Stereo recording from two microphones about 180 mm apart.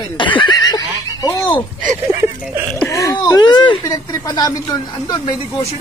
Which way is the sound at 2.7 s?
15° left (ahead or behind).